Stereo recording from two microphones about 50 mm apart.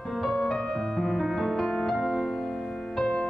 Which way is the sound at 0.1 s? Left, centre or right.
Centre.